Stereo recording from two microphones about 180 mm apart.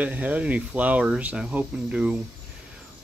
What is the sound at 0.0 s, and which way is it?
Speech, 10° right (ahead or behind).